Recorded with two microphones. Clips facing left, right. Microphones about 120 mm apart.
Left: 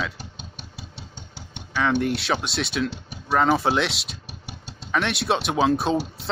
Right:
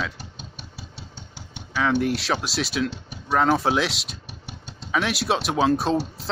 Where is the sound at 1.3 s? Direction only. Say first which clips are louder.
Left 1 dB; 10° right (ahead or behind).